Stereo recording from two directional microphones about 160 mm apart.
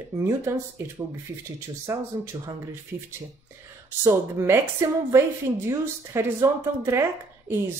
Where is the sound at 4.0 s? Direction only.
15° right (ahead or behind).